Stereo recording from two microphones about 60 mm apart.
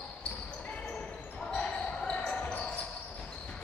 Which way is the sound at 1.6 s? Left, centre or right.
Centre.